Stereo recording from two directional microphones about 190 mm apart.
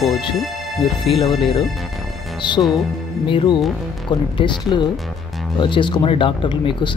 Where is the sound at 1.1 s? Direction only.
30° left (ahead or behind).